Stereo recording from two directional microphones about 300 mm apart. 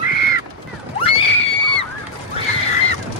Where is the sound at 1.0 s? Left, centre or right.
Centre.